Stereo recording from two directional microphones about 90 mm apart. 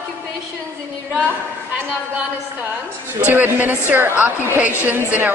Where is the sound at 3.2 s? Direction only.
20° right (ahead or behind).